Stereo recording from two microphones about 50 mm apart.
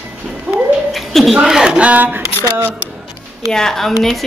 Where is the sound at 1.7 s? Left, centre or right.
Right.